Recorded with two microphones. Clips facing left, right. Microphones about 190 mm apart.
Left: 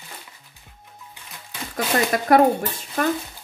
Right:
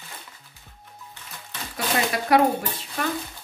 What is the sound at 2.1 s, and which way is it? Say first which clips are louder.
Speech: left 4 dB; 45° left (ahead or behind).